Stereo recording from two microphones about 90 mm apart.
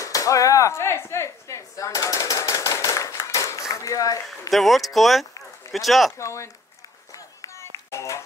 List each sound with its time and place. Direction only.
0.0 s speech: 40° left (ahead or behind)
4.5 s speech: centre (ahead or behind)
6.1 s speech: 35° left (ahead or behind)
7.2 s clapping: 35° left (ahead or behind)